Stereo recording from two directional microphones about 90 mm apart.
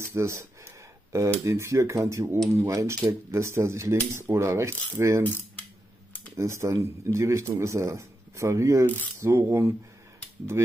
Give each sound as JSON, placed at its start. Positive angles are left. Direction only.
{"t": 0.0, "sound": "cutlery", "side_deg": -30}
{"t": 1.4, "sound": "speech", "side_deg": -35}
{"t": 6.3, "sound": "speech", "side_deg": -35}